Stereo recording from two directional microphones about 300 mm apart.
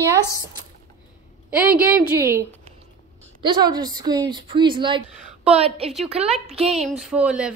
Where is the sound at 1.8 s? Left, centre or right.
Centre.